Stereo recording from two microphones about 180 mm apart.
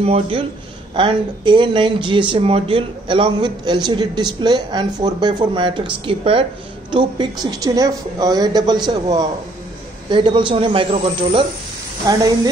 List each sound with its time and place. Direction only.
0.0 s a man's voice: 30° right (ahead or behind)
12.1 s speech: 20° right (ahead or behind)